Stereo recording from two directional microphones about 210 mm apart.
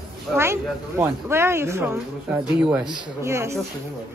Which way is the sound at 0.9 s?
10° right (ahead or behind).